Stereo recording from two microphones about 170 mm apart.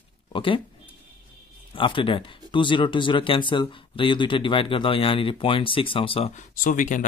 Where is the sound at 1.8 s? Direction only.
30° left (ahead or behind).